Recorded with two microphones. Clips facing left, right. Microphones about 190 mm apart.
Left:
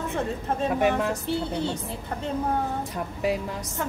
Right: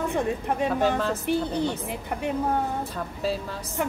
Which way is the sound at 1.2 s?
15° right (ahead or behind).